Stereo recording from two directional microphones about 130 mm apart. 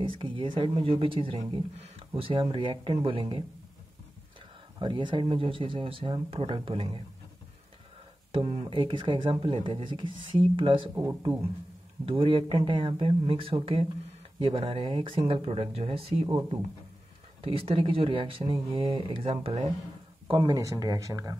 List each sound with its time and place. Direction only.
0.0 s speech: 40° right (ahead or behind)
4.7 s speech: 35° right (ahead or behind)
8.4 s speech: 40° right (ahead or behind)
12.1 s speech: 45° right (ahead or behind)
17.4 s speech: 45° right (ahead or behind)
20.2 s speech: 35° right (ahead or behind)